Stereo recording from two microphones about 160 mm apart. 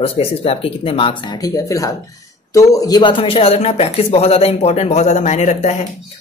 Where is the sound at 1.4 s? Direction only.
20° left (ahead or behind).